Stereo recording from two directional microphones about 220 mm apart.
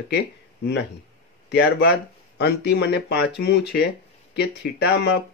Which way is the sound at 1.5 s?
50° left (ahead or behind).